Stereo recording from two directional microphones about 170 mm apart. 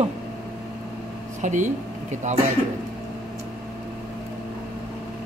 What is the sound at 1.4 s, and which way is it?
Speech, 45° right (ahead or behind).